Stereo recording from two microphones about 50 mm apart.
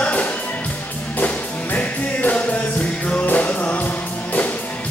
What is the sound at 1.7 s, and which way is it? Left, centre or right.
Music, left.